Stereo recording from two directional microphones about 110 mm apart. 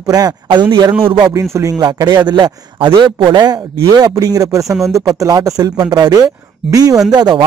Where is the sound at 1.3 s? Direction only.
30° right (ahead or behind).